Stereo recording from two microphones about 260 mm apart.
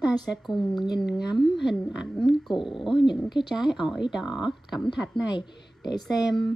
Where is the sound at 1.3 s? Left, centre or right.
Centre.